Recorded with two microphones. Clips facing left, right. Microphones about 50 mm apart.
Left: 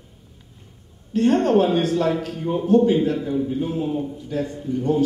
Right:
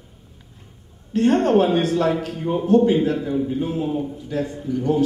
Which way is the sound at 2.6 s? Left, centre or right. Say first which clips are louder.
Even; right.